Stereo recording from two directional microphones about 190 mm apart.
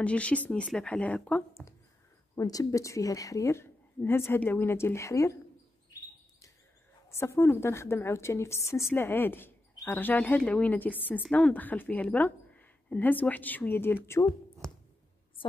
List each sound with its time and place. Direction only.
0.0 s speech: 5° left (ahead or behind)
7.1 s speech: 15° left (ahead or behind)